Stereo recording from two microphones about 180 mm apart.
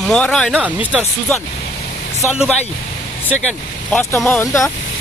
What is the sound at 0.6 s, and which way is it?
Speech, 5° right (ahead or behind).